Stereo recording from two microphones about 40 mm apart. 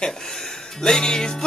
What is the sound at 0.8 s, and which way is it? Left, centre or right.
Music, centre.